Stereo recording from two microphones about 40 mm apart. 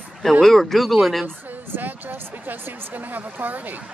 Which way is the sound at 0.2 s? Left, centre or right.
Centre.